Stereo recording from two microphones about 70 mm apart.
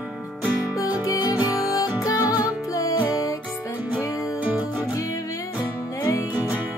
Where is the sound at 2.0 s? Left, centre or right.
Left.